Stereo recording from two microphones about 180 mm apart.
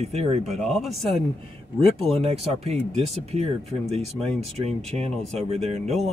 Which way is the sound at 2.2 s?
35° right (ahead or behind).